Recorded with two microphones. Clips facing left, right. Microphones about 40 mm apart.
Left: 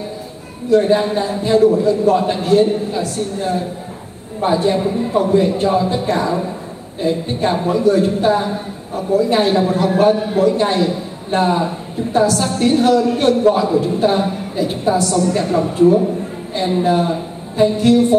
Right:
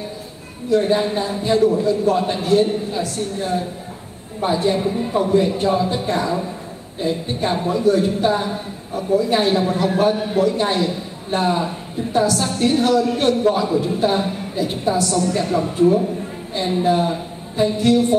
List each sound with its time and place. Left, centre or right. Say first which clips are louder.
0.7 s a man's voice: left 4 dB; centre
4.4 s a man's voice: left 3 dB; centre
9.9 s a man's voice: left 5 dB; left
10.4 s a man's voice: left 4 dB; centre
16.6 s a woman's voice: left 2 dB; centre